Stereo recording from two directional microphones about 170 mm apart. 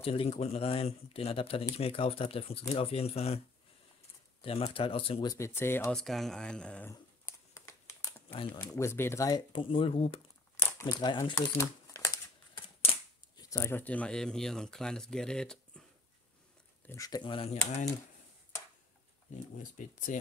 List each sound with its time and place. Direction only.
0.0 s speech: 35° left (ahead or behind)
4.4 s speech: 35° left (ahead or behind)
5.3 s speech: 15° left (ahead or behind)
5.9 s speech: centre (ahead or behind)
6.9 s a sound: 15° left (ahead or behind)
8.5 s speech: 15° left (ahead or behind)
9.5 s speech: 30° left (ahead or behind)
10.6 s speech: 20° left (ahead or behind)
13.4 s speech: 15° left (ahead or behind)
16.8 s speech: 20° left (ahead or behind)
19.6 s speech: 50° left (ahead or behind)